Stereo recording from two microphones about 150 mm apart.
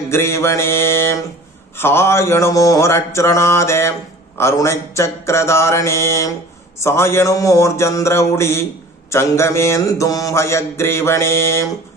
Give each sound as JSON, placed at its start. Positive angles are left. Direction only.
{"t": 0.1, "sound": "mantra", "side_deg": 15}